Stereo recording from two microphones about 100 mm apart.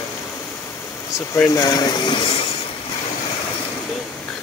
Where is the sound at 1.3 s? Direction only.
30° left (ahead or behind); by 2.2 s 50° left (ahead or behind).